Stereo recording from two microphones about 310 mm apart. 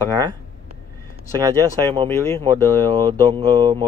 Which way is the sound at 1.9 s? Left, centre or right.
Centre.